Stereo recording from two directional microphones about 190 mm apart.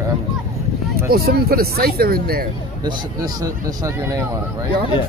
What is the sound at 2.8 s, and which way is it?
Speech, 20° right (ahead or behind).